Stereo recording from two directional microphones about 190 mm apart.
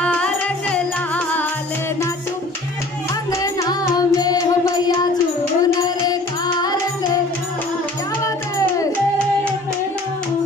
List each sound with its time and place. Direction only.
0.0 s music: 5° left (ahead or behind)
3.3 s music: 20° left (ahead or behind)
8.2 s music: 15° left (ahead or behind)